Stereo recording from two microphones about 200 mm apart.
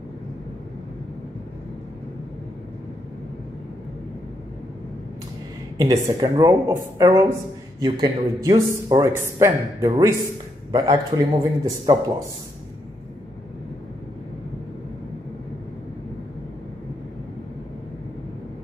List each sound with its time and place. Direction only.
5.8 s speech: 20° right (ahead or behind)